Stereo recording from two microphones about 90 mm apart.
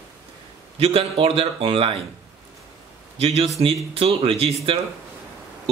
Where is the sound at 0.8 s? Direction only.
90° right.